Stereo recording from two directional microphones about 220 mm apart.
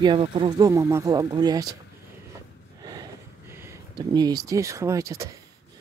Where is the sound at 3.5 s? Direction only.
10° right (ahead or behind).